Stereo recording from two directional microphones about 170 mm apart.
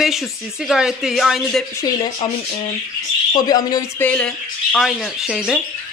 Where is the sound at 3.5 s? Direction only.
20° left (ahead or behind).